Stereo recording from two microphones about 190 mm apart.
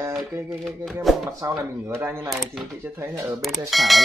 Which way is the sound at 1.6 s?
15° right (ahead or behind).